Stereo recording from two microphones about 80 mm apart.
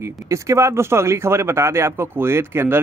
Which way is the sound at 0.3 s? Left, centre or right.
Right.